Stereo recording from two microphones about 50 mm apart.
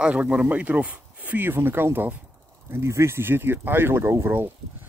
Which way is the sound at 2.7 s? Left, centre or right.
Right.